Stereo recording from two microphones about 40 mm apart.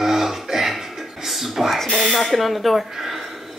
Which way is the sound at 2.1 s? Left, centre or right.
Centre.